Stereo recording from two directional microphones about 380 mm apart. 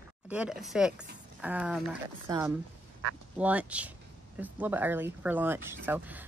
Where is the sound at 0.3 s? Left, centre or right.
Centre.